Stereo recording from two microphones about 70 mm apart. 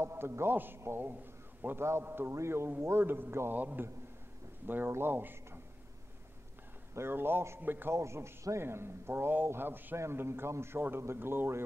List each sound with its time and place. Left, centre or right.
0.0 s a man's voice: right
6.9 s a man's voice: right
7.9 s a man's voice: right